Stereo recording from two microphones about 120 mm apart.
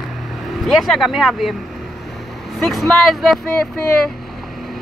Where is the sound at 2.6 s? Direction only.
Centre (ahead or behind).